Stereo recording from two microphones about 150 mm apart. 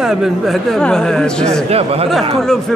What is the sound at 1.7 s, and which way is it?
Speech, 40° right (ahead or behind).